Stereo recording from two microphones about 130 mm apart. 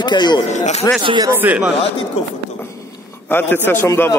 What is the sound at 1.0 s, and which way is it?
Speech, 35° right (ahead or behind).